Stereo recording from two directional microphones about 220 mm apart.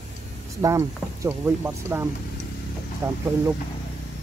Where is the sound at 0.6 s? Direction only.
15° right (ahead or behind).